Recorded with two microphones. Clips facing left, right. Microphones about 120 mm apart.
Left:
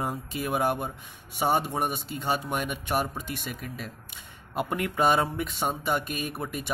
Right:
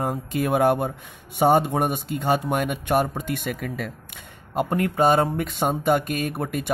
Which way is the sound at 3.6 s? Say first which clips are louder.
Right 8 dB; 85° right.